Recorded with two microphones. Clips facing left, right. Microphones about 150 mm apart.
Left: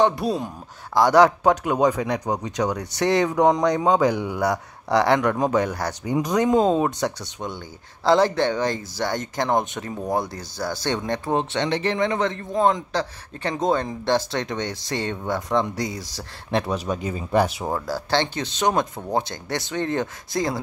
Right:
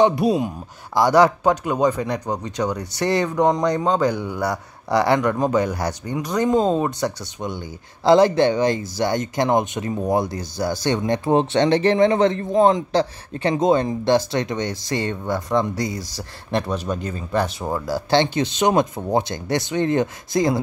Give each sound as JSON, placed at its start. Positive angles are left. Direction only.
{"t": 0.0, "sound": "speech", "side_deg": -15}
{"t": 0.9, "sound": "a man's voice", "side_deg": -5}
{"t": 6.3, "sound": "a man's voice", "side_deg": 0}
{"t": 7.4, "sound": "a man's voice", "side_deg": -15}
{"t": 11.5, "sound": "a man's voice", "side_deg": -35}
{"t": 17.8, "sound": "speech", "side_deg": -15}